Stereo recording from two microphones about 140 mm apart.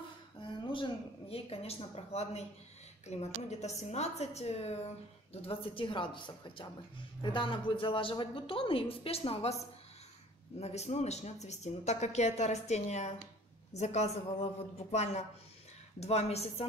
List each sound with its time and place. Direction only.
0.4 s a woman's voice: 35° left (ahead or behind)
10.6 s a woman's voice: 50° left (ahead or behind)